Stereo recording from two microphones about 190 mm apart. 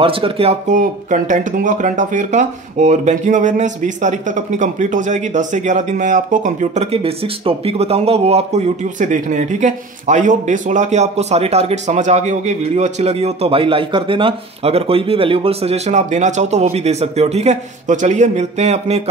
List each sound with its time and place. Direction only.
0.0 s speech: 30° right (ahead or behind)